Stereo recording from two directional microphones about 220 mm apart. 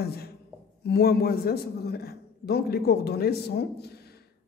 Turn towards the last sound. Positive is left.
turn(degrees=45)  # may be behind; listen again after turning